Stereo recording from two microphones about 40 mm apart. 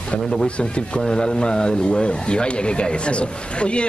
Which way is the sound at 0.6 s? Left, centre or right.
Left.